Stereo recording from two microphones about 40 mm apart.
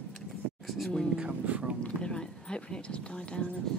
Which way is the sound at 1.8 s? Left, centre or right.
Left.